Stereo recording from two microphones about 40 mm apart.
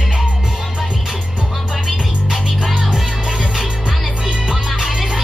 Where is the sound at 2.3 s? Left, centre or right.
Centre.